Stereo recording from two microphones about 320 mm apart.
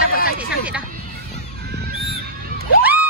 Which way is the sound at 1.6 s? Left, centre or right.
Right.